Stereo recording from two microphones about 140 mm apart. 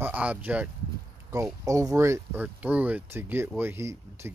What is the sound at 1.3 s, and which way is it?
Speech, 25° right (ahead or behind).